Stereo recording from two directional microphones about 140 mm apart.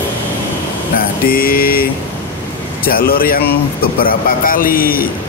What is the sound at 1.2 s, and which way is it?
Speech, 90° left.